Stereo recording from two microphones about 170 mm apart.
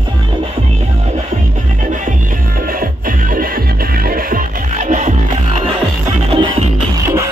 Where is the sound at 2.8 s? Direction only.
55° right (ahead or behind).